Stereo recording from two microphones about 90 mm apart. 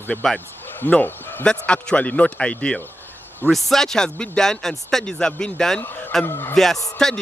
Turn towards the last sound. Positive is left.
turn(degrees=5)  # may be behind; listen again after turning